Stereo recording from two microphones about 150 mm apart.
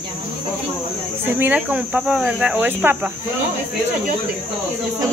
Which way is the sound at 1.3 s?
10° right (ahead or behind).